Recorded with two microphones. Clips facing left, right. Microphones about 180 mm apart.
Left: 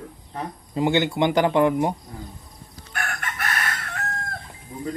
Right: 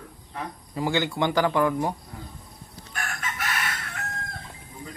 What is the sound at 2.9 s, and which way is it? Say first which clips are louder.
Chicken: left 3 dB; 60° left (ahead or behind).